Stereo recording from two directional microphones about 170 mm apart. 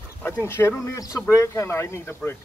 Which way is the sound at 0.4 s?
15° left (ahead or behind).